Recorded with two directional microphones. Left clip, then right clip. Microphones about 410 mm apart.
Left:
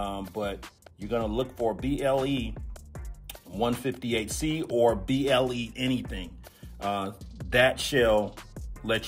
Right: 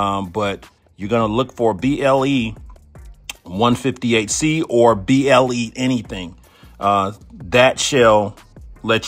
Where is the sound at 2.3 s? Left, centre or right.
Centre.